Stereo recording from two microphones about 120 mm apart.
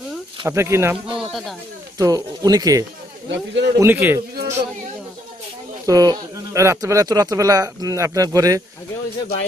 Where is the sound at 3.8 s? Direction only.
15° right (ahead or behind).